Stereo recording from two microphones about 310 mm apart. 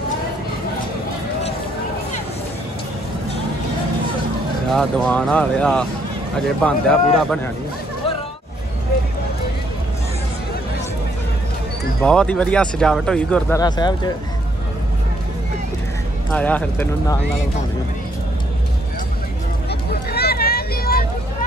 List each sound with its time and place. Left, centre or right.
4.6 s speech: centre
12.0 s speech: centre
16.3 s speech: centre
19.7 s vehicle: left